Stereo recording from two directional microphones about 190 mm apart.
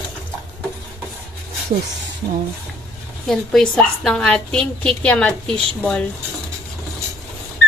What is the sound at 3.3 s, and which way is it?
A woman's voice, centre (ahead or behind).